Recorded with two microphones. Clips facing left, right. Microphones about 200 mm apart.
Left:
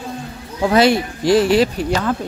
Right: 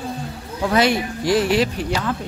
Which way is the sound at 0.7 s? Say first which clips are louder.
Left 4 dB; 30° left (ahead or behind).